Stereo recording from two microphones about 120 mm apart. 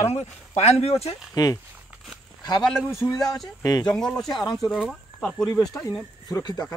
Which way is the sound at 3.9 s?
5° left (ahead or behind).